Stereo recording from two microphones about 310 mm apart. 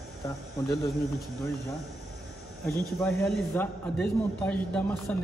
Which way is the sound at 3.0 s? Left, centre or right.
Centre.